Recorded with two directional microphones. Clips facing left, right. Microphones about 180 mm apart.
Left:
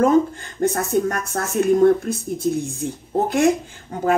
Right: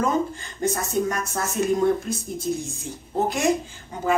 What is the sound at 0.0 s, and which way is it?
Speech, 60° left (ahead or behind).